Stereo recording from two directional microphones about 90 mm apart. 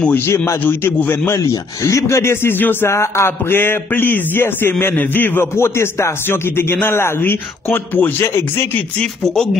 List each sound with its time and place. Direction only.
0.5 s a man's voice: 25° left (ahead or behind)
1.3 s a man's voice: 35° left (ahead or behind)
9.0 s speech: 5° left (ahead or behind)